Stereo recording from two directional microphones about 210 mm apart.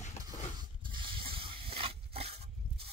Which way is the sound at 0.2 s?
20° right (ahead or behind).